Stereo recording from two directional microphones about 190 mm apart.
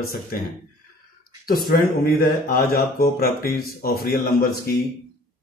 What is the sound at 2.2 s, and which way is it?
Speech, 50° left (ahead or behind).